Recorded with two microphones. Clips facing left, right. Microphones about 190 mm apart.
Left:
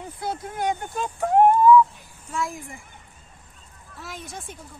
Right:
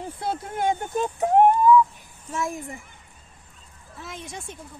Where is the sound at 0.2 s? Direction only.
25° right (ahead or behind).